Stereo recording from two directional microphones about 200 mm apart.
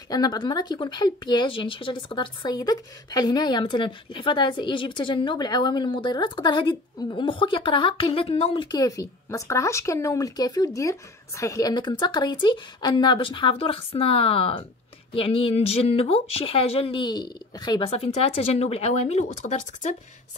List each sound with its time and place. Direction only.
0.1 s speech: 20° left (ahead or behind); by 20.0 s 40° left (ahead or behind)